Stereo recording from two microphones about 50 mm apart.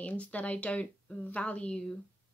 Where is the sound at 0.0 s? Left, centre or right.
Left.